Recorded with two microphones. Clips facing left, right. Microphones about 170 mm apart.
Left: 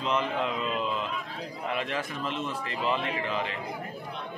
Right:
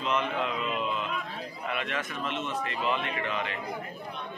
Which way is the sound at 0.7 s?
30° left (ahead or behind).